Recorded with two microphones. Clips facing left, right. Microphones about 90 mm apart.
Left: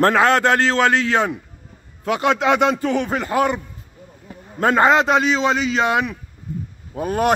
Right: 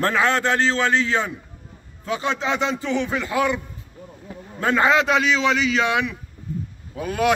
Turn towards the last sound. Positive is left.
turn(degrees=45)  # may be behind; listen again after turning